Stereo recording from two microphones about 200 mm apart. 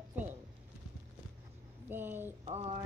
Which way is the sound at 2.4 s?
30° right (ahead or behind).